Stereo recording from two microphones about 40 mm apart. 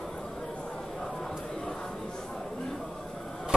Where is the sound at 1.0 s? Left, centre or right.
Left.